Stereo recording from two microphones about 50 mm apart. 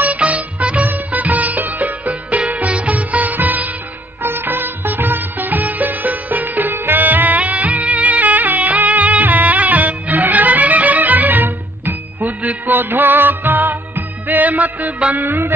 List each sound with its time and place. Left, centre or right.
0.0 s music: right
4.2 s music of bollywood: right
12.2 s music: right
15.1 s music: right